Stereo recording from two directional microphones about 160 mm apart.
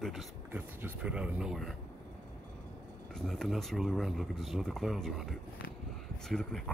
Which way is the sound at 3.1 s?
Centre (ahead or behind).